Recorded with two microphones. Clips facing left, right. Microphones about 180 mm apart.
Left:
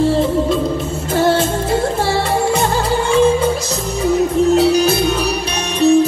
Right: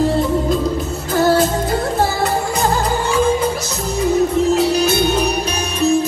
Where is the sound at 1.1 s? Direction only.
30° left (ahead or behind).